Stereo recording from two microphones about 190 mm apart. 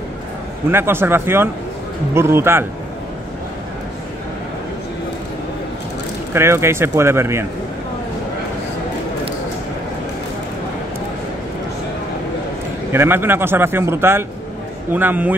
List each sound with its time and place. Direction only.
0.7 s speech: 10° right (ahead or behind)
6.3 s speech: 15° right (ahead or behind)
12.9 s speech: 10° right (ahead or behind)